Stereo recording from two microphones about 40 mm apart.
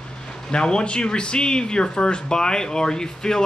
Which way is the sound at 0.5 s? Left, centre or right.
Left.